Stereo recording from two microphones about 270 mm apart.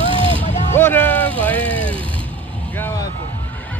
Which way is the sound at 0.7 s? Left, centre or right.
Centre.